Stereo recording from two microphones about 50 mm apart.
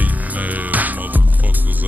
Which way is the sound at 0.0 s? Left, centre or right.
Right.